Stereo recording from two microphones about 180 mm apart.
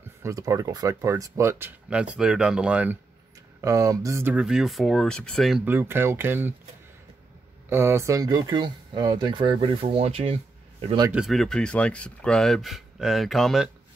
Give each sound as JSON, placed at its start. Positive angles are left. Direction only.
{"t": 0.2, "sound": "speech", "side_deg": -20}
{"t": 3.6, "sound": "speech", "side_deg": -20}
{"t": 5.7, "sound": "speech", "side_deg": -10}
{"t": 7.7, "sound": "speech", "side_deg": -15}
{"t": 11.1, "sound": "speech", "side_deg": 0}